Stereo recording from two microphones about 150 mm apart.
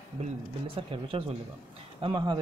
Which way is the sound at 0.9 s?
35° right (ahead or behind).